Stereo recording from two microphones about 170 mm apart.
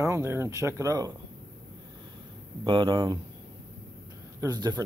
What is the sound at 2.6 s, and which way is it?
Speech, 30° right (ahead or behind).